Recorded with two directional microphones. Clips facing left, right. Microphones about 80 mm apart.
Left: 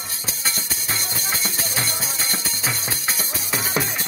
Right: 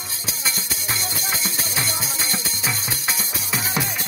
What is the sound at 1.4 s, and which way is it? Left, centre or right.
Music, left.